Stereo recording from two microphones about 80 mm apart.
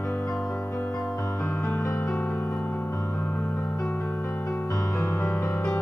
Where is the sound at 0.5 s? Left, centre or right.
Left.